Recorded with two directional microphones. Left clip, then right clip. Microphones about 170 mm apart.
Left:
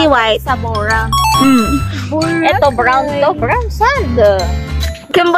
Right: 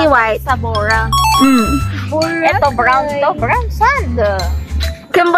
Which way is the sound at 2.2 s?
90° left.